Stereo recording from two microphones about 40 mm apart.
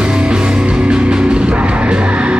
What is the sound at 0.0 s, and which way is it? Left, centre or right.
Music, right.